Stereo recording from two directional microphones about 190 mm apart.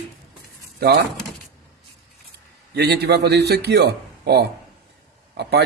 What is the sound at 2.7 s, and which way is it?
A man's voice, 60° right (ahead or behind).